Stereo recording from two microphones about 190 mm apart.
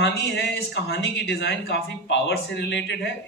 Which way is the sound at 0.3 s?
65° left (ahead or behind).